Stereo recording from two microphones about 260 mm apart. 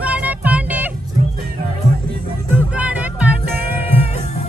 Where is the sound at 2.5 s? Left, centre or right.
Centre.